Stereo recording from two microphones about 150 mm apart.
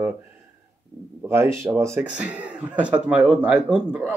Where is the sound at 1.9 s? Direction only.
5° right (ahead or behind).